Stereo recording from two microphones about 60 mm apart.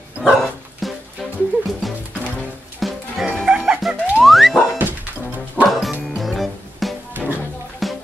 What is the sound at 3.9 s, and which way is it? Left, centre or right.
Music, centre.